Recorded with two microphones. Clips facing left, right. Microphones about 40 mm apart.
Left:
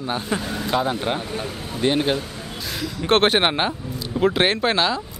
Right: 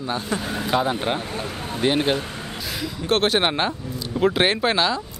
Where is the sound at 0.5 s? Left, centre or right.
Centre.